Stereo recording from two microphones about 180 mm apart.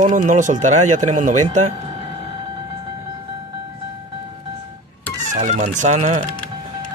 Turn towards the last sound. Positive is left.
turn(degrees=-40)  # may be behind; listen again after turning